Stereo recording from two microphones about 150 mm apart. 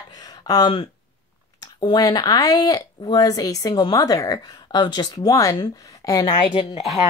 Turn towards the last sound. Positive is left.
turn(degrees=30)  # may be behind; listen again after turning